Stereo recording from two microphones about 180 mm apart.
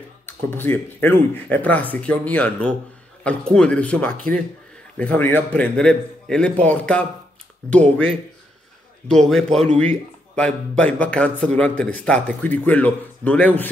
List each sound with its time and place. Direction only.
0.3 s a man's voice: 10° left (ahead or behind)